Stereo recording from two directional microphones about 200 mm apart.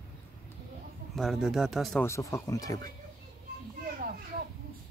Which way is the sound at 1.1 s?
Centre (ahead or behind).